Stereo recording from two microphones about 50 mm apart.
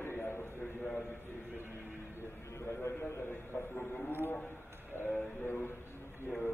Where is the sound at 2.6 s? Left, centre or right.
Left.